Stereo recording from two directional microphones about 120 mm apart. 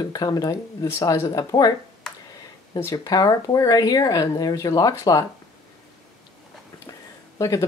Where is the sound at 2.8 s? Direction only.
30° left (ahead or behind).